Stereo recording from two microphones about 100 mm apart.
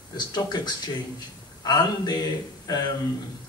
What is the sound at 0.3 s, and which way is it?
Speech, 45° left (ahead or behind).